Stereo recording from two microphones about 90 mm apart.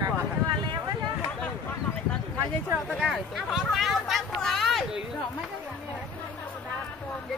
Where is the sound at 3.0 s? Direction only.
Centre (ahead or behind).